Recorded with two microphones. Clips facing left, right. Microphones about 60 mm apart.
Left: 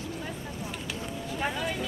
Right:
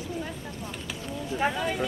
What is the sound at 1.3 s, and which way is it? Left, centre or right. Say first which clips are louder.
Speech: right 4 dB; centre.